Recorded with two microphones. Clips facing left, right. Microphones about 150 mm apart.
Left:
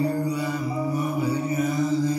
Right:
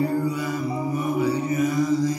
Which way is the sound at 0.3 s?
35° left (ahead or behind).